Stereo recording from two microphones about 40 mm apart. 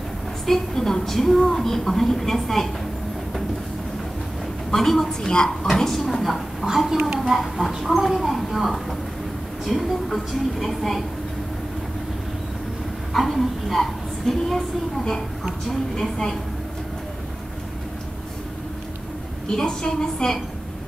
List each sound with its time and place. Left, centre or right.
0.5 s a woman's voice: centre
4.6 s a woman's voice: centre
5.3 s speech: left
5.7 s a woman's voice: centre
6.6 s speech: centre
7.2 s a woman's voice: centre
13.1 s a woman's voice: centre
16.0 s a woman's voice: centre
19.4 s a woman's voice: centre